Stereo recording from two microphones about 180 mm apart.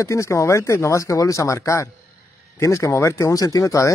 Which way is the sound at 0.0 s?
15° left (ahead or behind).